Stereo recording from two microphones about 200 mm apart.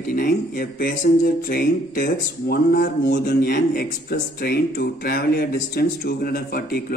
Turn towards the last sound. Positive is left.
turn(degrees=50)  # may be behind; listen again after turning